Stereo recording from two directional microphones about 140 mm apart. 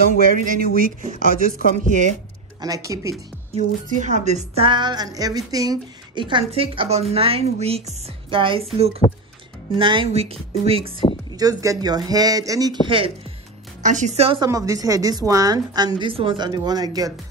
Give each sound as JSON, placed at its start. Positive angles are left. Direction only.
{"t": 0.3, "sound": "speech", "side_deg": -85}
{"t": 1.7, "sound": "speech", "side_deg": -65}
{"t": 2.6, "sound": "a woman's voice", "side_deg": -25}
{"t": 3.5, "sound": "speech", "side_deg": -60}
{"t": 4.6, "sound": "a woman's voice", "side_deg": -30}
{"t": 9.0, "sound": "speech", "side_deg": 50}
{"t": 9.8, "sound": "speech", "side_deg": -35}
{"t": 11.3, "sound": "a woman's voice", "side_deg": -25}
{"t": 13.8, "sound": "speech", "side_deg": -60}
{"t": 14.4, "sound": "a woman's voice", "side_deg": -25}